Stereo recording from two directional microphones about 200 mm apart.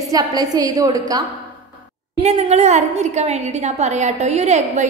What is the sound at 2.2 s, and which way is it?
A woman's voice, 30° right (ahead or behind).